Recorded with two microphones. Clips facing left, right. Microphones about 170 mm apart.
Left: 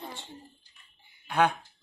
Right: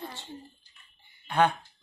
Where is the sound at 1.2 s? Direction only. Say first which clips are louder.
Right 1 dB; 10° left (ahead or behind).